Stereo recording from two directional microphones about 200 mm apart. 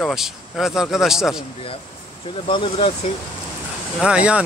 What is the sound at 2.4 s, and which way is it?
Speech, 25° left (ahead or behind).